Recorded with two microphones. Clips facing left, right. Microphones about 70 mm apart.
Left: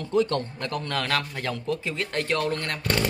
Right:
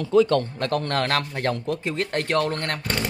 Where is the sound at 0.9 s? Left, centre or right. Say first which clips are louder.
Right 3 dB; right.